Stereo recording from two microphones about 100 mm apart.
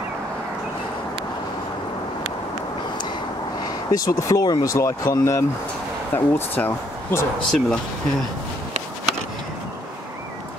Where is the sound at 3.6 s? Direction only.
35° left (ahead or behind).